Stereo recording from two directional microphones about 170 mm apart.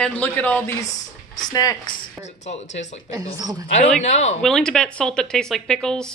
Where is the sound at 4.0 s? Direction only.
40° left (ahead or behind).